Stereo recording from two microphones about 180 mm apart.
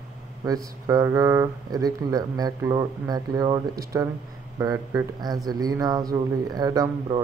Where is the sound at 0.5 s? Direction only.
20° right (ahead or behind).